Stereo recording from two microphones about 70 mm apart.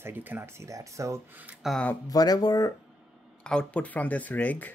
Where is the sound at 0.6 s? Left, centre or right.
Right.